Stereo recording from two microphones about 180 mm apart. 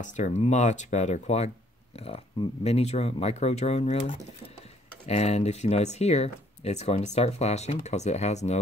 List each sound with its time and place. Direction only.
0.0 s speech: 40° left (ahead or behind)